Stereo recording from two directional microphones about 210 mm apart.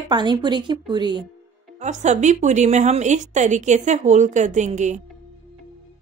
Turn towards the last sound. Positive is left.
turn(degrees=-35)  # may be behind; listen again after turning